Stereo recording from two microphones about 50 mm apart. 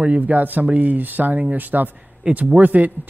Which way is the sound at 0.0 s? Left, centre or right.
Right.